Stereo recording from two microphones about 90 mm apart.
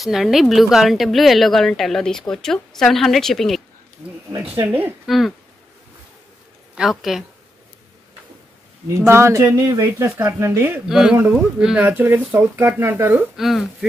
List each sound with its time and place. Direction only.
0.0 s a woman's voice: 5° right (ahead or behind)
4.6 s speech: 20° right (ahead or behind)
5.0 s a woman's voice: centre (ahead or behind)
6.7 s speech: 5° right (ahead or behind)
8.9 s speech: 30° right (ahead or behind)
10.9 s speech: 5° right (ahead or behind); by 13.1 s 25° right (ahead or behind)
13.4 s a woman's voice: centre (ahead or behind)